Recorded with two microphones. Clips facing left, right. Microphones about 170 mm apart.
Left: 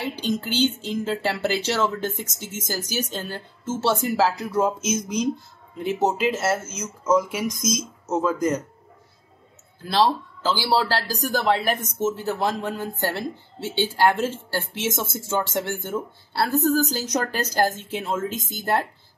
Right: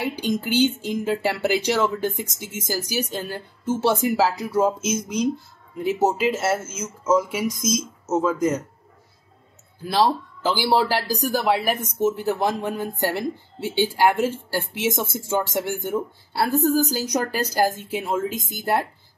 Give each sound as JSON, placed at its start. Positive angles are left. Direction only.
{"t": 0.0, "sound": "speech", "side_deg": -10}
{"t": 9.8, "sound": "speech", "side_deg": -15}